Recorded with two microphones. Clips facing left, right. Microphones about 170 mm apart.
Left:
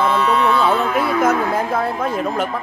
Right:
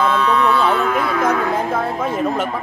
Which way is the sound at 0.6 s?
5° left (ahead or behind).